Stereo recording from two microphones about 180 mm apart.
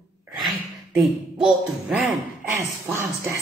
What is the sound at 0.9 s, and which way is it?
Speech, 5° right (ahead or behind).